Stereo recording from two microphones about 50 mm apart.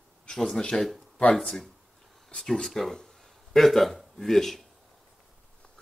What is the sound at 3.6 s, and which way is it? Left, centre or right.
Speech, centre.